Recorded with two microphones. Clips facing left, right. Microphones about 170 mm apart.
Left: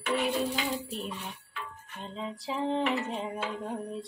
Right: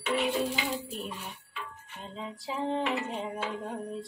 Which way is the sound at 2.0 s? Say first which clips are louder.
Left 2 dB; centre (ahead or behind).